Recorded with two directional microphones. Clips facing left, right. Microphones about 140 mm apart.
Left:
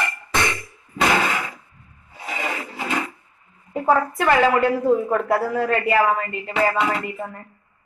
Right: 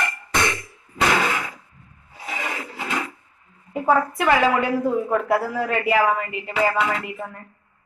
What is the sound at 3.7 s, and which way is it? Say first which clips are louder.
A woman's voice: left 1 dB; 5° right (ahead or behind).